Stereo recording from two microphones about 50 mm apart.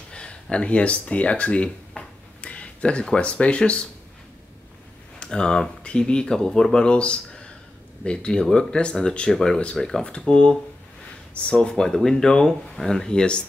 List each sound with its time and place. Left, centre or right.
0.1 s a sound: left
3.2 s speech: left
5.2 s speech: centre